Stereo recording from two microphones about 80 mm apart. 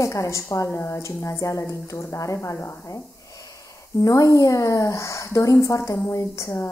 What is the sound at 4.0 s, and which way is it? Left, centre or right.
A woman's voice, left.